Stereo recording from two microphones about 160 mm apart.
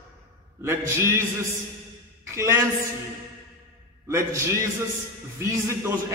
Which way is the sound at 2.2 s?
20° right (ahead or behind).